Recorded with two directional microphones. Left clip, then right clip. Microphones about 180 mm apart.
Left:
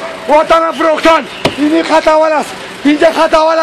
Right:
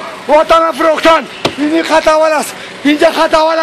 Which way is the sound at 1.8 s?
55° right (ahead or behind).